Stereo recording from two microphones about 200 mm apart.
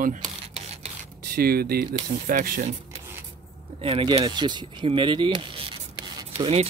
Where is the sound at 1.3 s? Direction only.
50° right (ahead or behind).